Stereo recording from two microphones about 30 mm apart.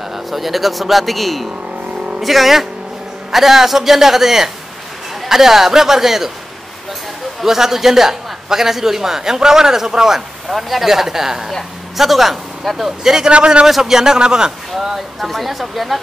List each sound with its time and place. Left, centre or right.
0.1 s a man's voice: centre
7.4 s a man's voice: centre
10.5 s a man's voice: centre
13.0 s a man's voice: centre
13.3 s a man's voice: right
13.7 s speech: centre
13.9 s speech: right
15.1 s speech: centre